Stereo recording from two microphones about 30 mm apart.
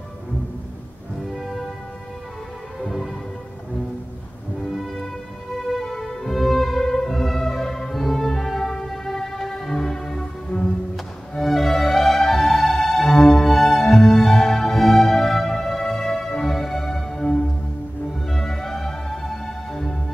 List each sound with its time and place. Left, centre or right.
1.3 s music: centre
5.8 s music: centre
6.3 s music: centre
11.3 s music: centre
13.8 s music: centre